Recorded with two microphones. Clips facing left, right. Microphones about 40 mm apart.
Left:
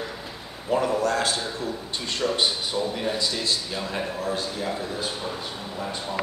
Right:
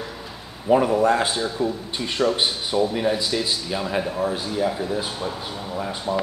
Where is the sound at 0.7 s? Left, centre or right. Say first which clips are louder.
Right 6 dB; centre.